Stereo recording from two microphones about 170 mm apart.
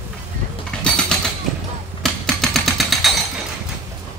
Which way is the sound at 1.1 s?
5° left (ahead or behind).